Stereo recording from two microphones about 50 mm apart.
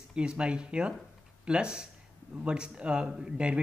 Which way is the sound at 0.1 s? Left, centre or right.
Centre.